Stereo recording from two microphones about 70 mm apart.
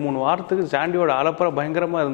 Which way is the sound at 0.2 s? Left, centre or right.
Left.